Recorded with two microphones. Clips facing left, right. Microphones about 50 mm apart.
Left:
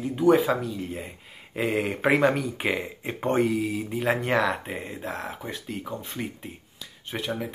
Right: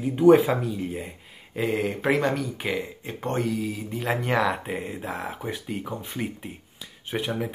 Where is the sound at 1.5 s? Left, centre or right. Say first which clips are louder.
Even; centre.